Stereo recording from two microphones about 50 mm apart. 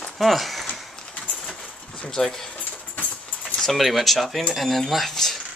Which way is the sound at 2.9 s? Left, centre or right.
Left.